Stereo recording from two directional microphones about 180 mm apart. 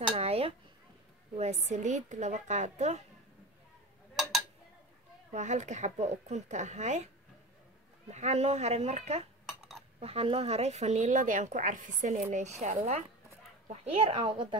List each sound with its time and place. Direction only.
0.0 s dishes: 35° right (ahead or behind)
1.3 s speech: 35° right (ahead or behind)
5.3 s speech: 40° right (ahead or behind)
8.1 s speech: 40° right (ahead or behind)